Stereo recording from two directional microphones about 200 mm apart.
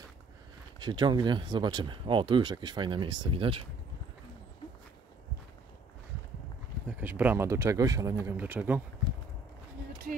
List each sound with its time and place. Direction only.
0.7 s speech: 20° right (ahead or behind)
7.0 s speech: 10° right (ahead or behind)